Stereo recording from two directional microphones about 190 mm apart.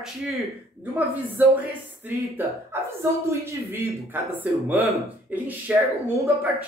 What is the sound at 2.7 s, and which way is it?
A man's voice, 10° right (ahead or behind).